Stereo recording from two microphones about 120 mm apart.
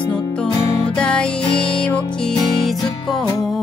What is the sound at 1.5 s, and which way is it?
Music, 45° left (ahead or behind).